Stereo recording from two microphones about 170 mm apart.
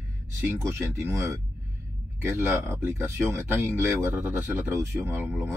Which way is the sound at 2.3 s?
15° right (ahead or behind).